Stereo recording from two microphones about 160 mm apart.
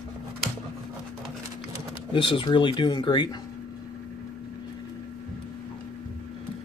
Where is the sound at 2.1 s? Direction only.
30° left (ahead or behind).